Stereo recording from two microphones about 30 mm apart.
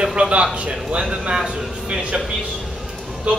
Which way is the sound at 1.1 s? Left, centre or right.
Right.